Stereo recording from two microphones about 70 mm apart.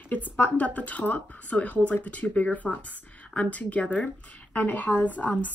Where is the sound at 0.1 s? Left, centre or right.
Left.